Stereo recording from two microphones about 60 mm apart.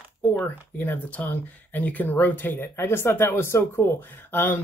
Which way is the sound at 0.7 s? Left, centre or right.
Left.